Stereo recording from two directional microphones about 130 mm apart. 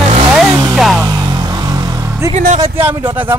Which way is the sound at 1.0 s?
30° right (ahead or behind).